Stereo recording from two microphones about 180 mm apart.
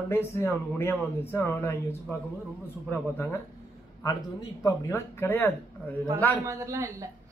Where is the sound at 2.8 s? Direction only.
10° left (ahead or behind).